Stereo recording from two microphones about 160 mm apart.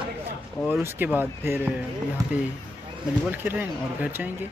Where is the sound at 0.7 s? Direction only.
15° right (ahead or behind).